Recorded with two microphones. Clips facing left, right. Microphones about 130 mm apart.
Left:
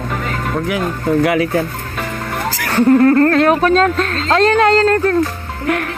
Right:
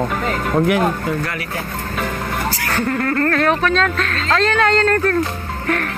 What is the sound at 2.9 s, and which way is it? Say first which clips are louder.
Speech: left 10 dB; 25° left (ahead or behind).